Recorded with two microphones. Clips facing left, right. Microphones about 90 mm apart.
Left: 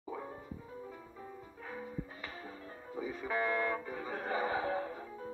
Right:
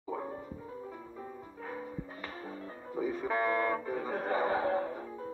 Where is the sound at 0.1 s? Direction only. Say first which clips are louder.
Right 5 dB; 20° right (ahead or behind).